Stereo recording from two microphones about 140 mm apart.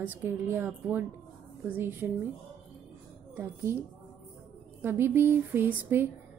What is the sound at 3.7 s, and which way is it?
A woman's voice, 15° right (ahead or behind).